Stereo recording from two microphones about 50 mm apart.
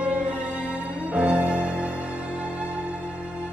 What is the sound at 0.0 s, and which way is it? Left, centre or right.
Music, right.